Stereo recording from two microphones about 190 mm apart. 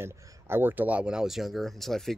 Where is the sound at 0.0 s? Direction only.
10° right (ahead or behind).